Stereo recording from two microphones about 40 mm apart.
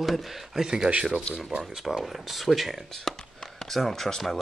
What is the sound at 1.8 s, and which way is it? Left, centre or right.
Speech, centre.